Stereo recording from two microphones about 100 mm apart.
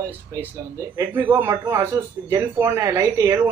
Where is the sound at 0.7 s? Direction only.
30° right (ahead or behind).